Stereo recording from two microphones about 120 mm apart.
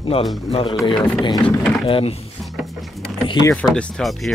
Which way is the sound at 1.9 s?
50° left (ahead or behind).